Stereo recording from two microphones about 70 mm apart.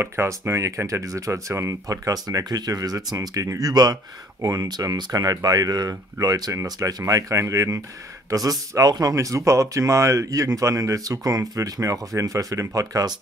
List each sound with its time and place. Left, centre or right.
0.0 s speech: right
2.2 s speech: right